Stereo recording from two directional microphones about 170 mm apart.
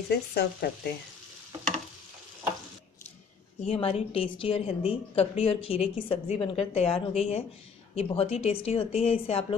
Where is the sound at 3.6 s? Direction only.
35° left (ahead or behind).